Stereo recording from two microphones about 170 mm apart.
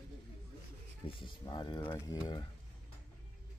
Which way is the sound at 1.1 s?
30° left (ahead or behind).